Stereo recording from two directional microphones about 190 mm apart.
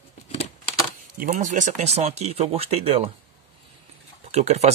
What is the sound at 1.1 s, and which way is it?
Speech, 45° right (ahead or behind).